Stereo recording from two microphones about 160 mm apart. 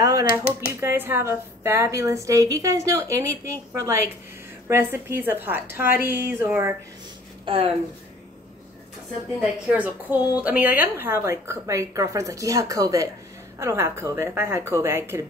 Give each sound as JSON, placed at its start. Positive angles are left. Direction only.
{"t": 0.0, "sound": "typewriter", "side_deg": -20}
{"t": 0.4, "sound": "speech", "side_deg": 15}
{"t": 0.7, "sound": "a woman's voice", "side_deg": -15}
{"t": 7.4, "sound": "speech", "side_deg": -35}
{"t": 9.4, "sound": "a woman's voice", "side_deg": -10}